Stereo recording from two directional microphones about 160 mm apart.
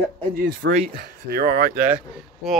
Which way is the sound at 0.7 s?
60° right (ahead or behind).